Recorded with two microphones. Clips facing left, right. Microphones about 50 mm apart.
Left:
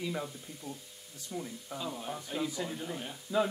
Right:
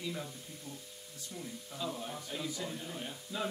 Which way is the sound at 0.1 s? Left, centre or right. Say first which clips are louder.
Left 4 dB; left.